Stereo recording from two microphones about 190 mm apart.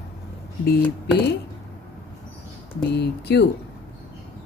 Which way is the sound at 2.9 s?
60° left (ahead or behind).